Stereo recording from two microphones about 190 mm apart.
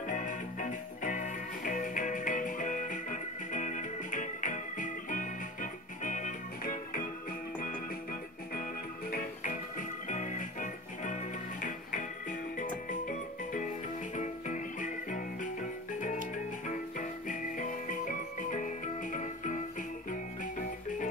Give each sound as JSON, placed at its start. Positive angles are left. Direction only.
{"t": 0.0, "sound": "music", "side_deg": 40}
{"t": 14.1, "sound": "music", "side_deg": 40}
{"t": 17.3, "sound": "music", "side_deg": 45}